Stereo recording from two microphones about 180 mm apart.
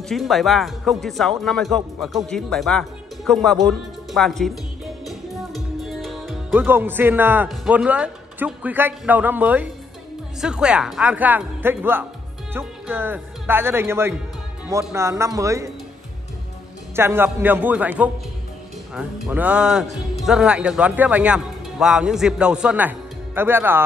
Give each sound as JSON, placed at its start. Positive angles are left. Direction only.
{"t": 0.1, "sound": "speech", "side_deg": 0}
{"t": 1.4, "sound": "music", "side_deg": 0}
{"t": 6.5, "sound": "a man's voice", "side_deg": -10}
{"t": 16.9, "sound": "a man's voice", "side_deg": -15}